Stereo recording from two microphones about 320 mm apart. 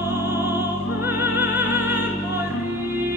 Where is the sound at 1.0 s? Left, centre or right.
Centre.